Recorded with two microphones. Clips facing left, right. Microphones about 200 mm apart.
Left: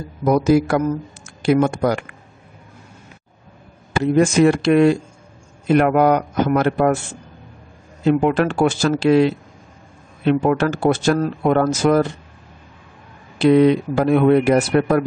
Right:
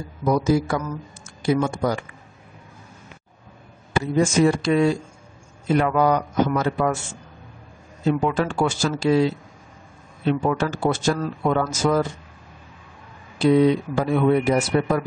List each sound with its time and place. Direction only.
0.2 s speech: 65° left (ahead or behind)
4.0 s speech: 65° left (ahead or behind)
8.0 s speech: 70° left (ahead or behind)
10.3 s speech: 60° left (ahead or behind)
13.4 s speech: 70° left (ahead or behind)